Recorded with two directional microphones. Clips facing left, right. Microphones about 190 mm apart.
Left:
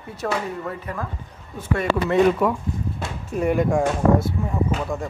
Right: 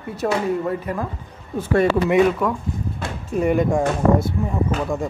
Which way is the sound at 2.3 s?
5° left (ahead or behind).